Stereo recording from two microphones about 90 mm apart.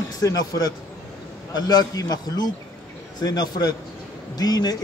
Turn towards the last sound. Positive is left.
turn(degrees=45)  # may be behind; listen again after turning